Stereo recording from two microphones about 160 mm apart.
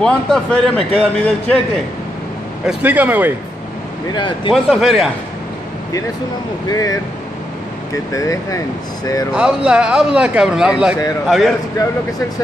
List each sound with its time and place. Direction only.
0.0 s speech: 5° left (ahead or behind)
2.6 s speech: 10° right (ahead or behind)
4.1 s speech: 30° left (ahead or behind)
4.6 s speech: centre (ahead or behind)
6.7 s speech: 20° left (ahead or behind)
9.3 s speech: 5° right (ahead or behind)